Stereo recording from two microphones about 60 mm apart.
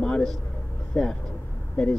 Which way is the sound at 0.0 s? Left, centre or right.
Centre.